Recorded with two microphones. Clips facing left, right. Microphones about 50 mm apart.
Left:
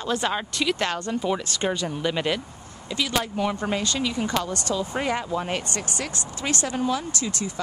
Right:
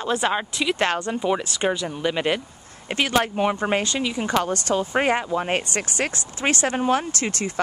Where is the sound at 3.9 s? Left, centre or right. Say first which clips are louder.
Right 2 dB; right.